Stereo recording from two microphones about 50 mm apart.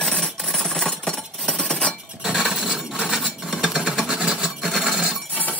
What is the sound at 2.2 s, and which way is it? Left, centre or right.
Coin, centre.